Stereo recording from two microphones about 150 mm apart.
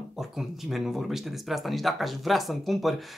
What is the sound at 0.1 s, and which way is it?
Speech, centre (ahead or behind).